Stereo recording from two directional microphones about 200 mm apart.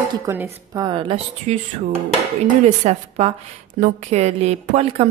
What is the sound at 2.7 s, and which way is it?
A woman's voice, 30° right (ahead or behind).